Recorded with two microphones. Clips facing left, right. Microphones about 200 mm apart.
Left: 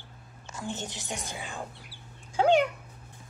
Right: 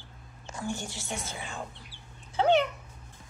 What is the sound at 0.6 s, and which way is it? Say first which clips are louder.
Speech: right 1 dB; 20° left (ahead or behind).